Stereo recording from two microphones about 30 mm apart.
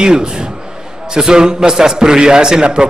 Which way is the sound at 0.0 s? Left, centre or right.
Right.